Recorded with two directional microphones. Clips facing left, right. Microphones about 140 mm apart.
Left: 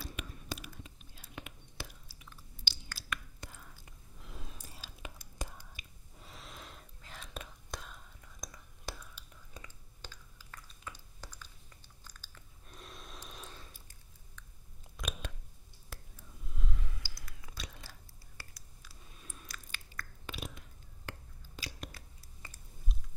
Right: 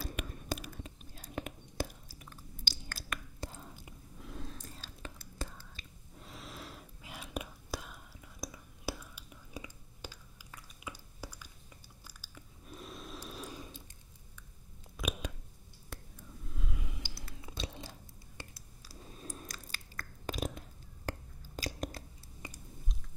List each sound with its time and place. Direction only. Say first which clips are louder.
0.0 s whispering: right 4 dB; 45° right (ahead or behind)
3.3 s whispering: right 6 dB; 30° right (ahead or behind)
4.2 s whispering: right 6 dB; centre (ahead or behind)
6.1 s whispering: right 3 dB; centre (ahead or behind)
12.0 s chewing: right 2 dB; 10° right (ahead or behind)
15.0 s a sound: right 4 dB; 5° right (ahead or behind)
15.9 s whispering: right 3 dB; centre (ahead or behind)
16.4 s snort: right 2 dB; centre (ahead or behind)
16.8 s chewing: right 5 dB; 20° right (ahead or behind); by 22.0 s 40° right (ahead or behind)
22.4 s chewing: right 6 dB; 15° right (ahead or behind)